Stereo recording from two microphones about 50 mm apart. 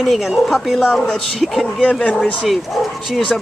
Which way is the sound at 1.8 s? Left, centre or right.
Centre.